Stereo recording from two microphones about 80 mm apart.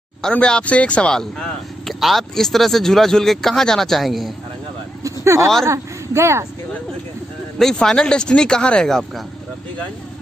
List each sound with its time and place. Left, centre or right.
0.2 s speech: centre
1.9 s speech: centre
5.2 s speech: right
7.7 s speech: centre